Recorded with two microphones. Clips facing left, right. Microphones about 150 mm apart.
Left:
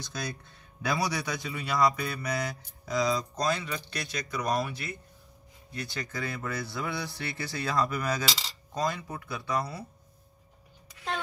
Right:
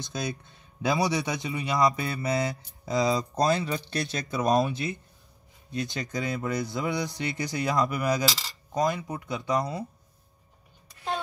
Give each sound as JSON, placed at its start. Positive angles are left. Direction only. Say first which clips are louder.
{"t": 0.0, "sound": "a man's voice", "louder": "right 4 dB", "side_deg": -20}